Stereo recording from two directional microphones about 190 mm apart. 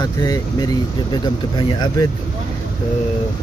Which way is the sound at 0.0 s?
20° left (ahead or behind).